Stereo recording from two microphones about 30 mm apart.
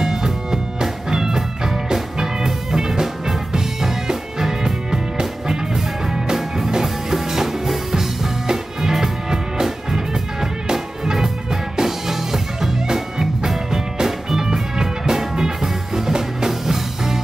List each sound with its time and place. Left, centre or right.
0.0 s music: centre
6.7 s music: centre
9.3 s music: right